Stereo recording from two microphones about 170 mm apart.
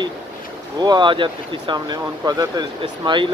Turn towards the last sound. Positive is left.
turn(degrees=-25)  # may be behind; listen again after turning